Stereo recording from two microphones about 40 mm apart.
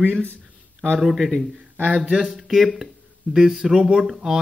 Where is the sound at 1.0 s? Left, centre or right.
Centre.